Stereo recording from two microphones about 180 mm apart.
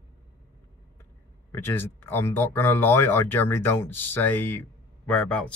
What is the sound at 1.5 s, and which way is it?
Speech, 10° left (ahead or behind).